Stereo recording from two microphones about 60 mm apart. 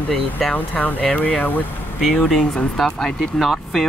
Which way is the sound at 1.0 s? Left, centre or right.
Centre.